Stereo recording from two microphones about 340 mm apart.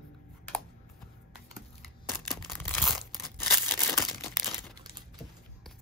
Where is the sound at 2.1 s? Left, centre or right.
Centre.